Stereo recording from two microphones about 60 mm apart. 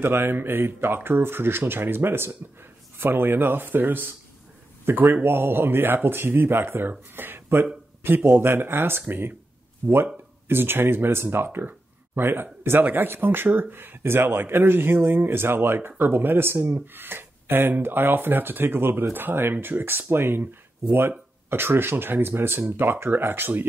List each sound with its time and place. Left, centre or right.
0.0 s speech: right
5.1 s speech: right
9.8 s speech: right
10.5 s speech: right
21.5 s speech: right